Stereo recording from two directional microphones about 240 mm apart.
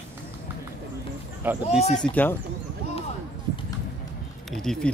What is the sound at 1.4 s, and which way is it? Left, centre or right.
Speech, centre.